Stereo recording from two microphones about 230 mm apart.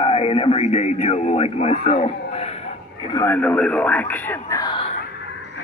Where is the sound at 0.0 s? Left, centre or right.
Left.